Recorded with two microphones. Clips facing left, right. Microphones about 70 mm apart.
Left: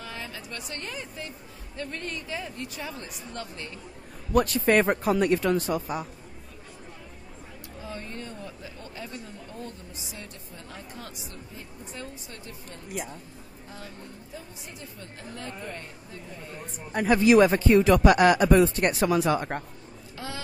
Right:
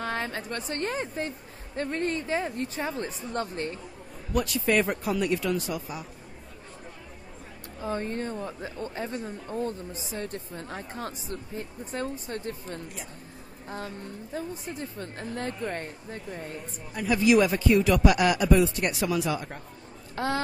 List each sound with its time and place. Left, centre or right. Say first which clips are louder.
0.0 s speech: right 7 dB; right
4.3 s speech: left 4 dB; left
7.8 s speech: right 8 dB; right
16.9 s speech: left 3 dB; left
20.2 s speech: right 9 dB; right